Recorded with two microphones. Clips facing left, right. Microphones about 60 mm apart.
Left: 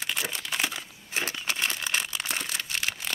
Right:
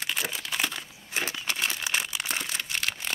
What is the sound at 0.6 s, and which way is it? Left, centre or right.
Crumpling, centre.